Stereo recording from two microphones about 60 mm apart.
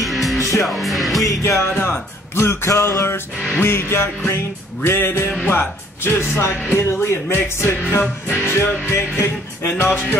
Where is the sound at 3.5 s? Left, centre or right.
Left.